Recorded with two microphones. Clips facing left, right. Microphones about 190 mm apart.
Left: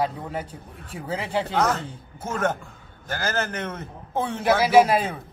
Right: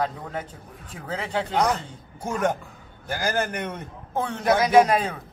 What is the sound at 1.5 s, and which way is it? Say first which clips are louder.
A man's voice: right 2 dB; 15° right (ahead or behind).